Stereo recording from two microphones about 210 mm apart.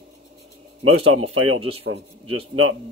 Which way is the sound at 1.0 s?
90° right.